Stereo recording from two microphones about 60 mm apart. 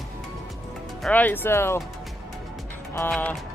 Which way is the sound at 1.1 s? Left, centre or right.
Left.